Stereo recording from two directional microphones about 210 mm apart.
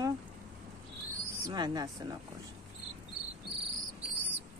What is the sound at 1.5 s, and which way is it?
Speech, 20° right (ahead or behind).